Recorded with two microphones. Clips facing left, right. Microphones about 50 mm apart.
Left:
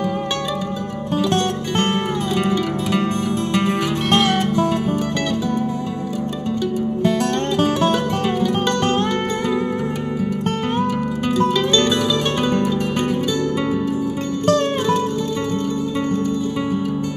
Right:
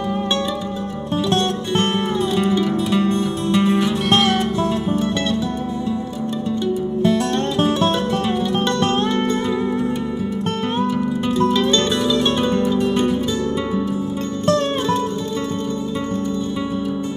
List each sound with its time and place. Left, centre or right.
2.6 s music: left
12.7 s music: left